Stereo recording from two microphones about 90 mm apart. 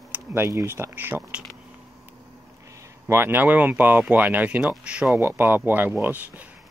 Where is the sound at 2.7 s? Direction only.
25° right (ahead or behind).